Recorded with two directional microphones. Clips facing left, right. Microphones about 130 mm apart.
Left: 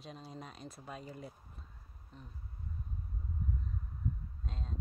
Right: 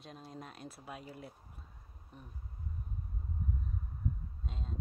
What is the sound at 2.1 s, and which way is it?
Speech, 15° right (ahead or behind).